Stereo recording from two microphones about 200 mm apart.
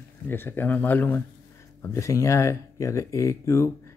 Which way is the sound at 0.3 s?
10° left (ahead or behind).